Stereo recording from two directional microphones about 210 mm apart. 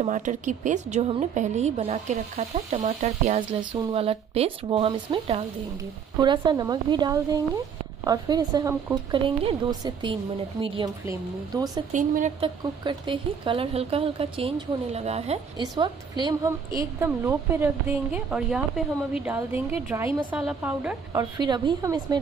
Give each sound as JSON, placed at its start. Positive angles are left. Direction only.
{"t": 0.0, "sound": "a woman's voice", "side_deg": -35}
{"t": 11.9, "sound": "a woman's voice", "side_deg": -35}
{"t": 12.4, "sound": "a woman's voice", "side_deg": -25}
{"t": 21.1, "sound": "speech", "side_deg": -20}